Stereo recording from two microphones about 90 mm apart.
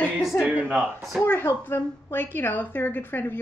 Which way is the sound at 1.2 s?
25° left (ahead or behind).